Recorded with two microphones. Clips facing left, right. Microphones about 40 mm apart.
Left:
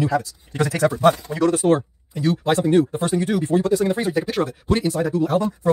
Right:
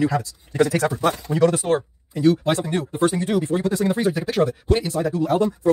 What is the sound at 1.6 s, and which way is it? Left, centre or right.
Speech, left.